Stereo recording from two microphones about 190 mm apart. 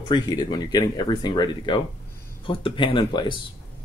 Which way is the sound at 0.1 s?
20° left (ahead or behind).